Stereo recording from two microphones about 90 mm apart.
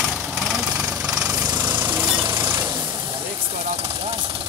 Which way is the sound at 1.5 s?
50° right (ahead or behind).